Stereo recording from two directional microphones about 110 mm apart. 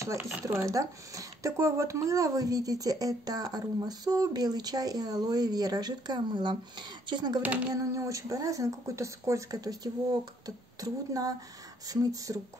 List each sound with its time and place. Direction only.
0.0 s speech: 25° right (ahead or behind)
7.4 s speech: 10° right (ahead or behind)
7.7 s speech: 30° right (ahead or behind)